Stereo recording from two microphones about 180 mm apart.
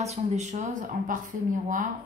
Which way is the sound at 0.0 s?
40° right (ahead or behind).